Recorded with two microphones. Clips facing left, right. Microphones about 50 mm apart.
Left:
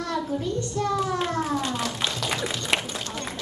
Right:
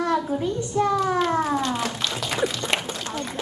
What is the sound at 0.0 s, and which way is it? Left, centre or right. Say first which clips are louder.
Speech: right 4 dB; centre.